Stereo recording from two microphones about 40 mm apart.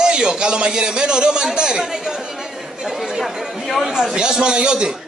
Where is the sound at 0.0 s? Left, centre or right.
Centre.